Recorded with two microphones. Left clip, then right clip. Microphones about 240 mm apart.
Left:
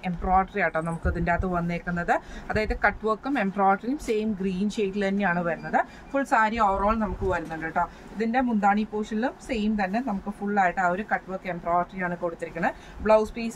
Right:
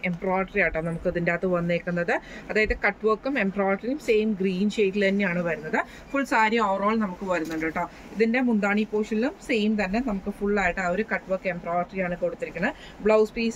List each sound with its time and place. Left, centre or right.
0.0 s speech: centre
8.2 s a woman's voice: centre